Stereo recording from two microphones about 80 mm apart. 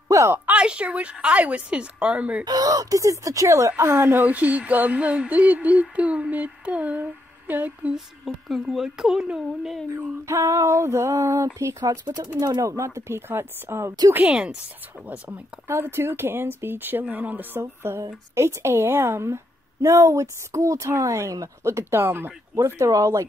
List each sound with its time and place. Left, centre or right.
0.1 s a sound: right
0.5 s a woman's voice: centre
2.4 s speech: right
8.5 s a woman's voice: centre
10.2 s a woman's voice: right
14.2 s a woman's voice: centre
15.0 s speech: centre
15.6 s a woman's voice: right